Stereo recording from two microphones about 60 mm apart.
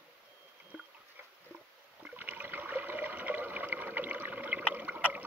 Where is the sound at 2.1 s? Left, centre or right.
Right.